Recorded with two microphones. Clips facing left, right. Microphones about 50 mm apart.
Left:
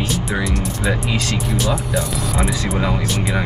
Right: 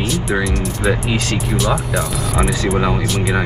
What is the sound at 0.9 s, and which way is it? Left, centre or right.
Speech, right.